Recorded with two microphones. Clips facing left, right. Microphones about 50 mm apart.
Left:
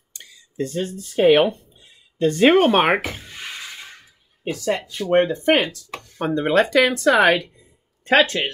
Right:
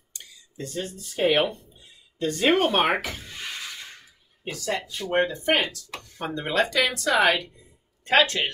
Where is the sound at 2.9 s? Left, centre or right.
Left.